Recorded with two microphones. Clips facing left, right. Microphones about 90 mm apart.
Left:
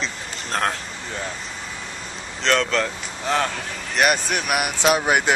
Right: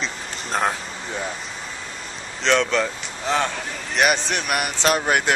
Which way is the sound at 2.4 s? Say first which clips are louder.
Right 1 dB; centre (ahead or behind).